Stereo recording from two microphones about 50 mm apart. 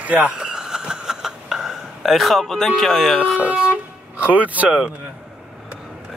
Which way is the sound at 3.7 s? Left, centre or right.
Right.